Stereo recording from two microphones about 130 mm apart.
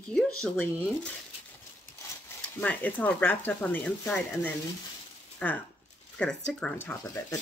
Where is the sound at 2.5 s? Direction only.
10° left (ahead or behind).